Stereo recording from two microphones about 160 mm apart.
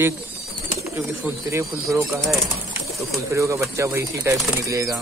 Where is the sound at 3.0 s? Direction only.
20° right (ahead or behind).